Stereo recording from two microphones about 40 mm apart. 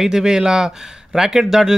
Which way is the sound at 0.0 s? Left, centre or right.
Centre.